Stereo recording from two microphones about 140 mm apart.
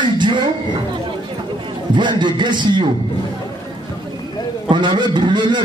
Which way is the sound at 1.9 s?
35° right (ahead or behind).